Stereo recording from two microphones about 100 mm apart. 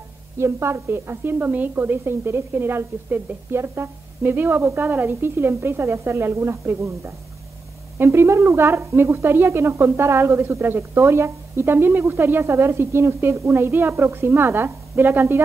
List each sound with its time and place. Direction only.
0.4 s a woman's voice: 25° right (ahead or behind)
8.0 s a woman's voice: 25° right (ahead or behind)